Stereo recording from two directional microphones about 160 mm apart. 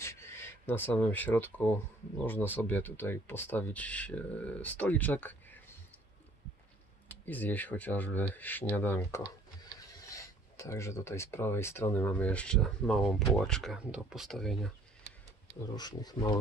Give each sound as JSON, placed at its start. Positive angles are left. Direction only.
{"t": 0.0, "sound": "speech", "side_deg": 15}
{"t": 7.1, "sound": "speech", "side_deg": 10}
{"t": 15.7, "sound": "speech", "side_deg": 25}